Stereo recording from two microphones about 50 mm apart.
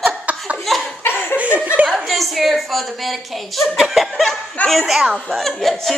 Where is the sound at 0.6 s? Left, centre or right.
Centre.